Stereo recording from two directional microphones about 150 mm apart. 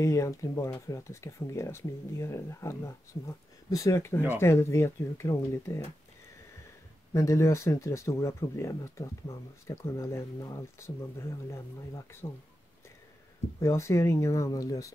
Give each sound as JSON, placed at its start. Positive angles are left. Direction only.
{"t": 0.0, "sound": "speech", "side_deg": 20}
{"t": 7.2, "sound": "speech", "side_deg": 20}
{"t": 13.6, "sound": "speech", "side_deg": 20}